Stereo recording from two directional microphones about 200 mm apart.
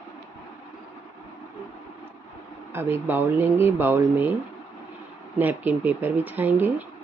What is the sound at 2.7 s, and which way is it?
Speech, 10° right (ahead or behind).